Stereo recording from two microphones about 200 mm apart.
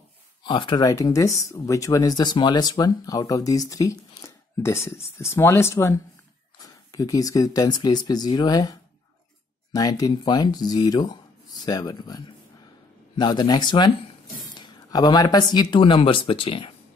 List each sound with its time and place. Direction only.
0.4 s speech: 25° left (ahead or behind)